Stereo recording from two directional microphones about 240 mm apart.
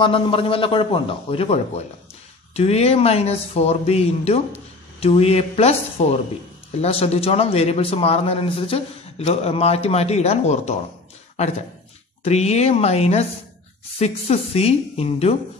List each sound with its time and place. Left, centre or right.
0.0 s a man's voice: left
12.2 s a man's voice: left